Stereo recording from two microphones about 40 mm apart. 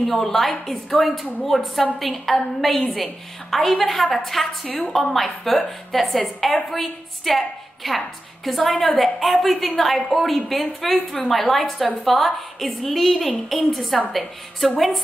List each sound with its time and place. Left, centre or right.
0.0 s a woman's voice: centre
4.6 s a woman's voice: left
5.1 s a woman's voice: centre